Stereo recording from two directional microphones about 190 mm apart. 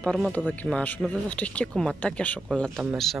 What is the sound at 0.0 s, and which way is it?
Speech, 5° left (ahead or behind).